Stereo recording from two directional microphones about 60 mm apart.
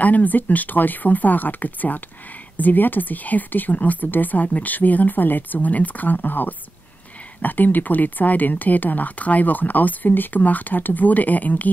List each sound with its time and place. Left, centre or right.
0.0 s speech: left